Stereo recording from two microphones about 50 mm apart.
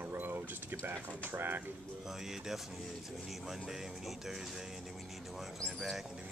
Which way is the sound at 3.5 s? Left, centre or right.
Centre.